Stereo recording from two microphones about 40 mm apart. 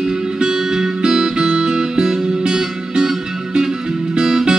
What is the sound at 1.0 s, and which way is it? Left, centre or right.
Music, centre.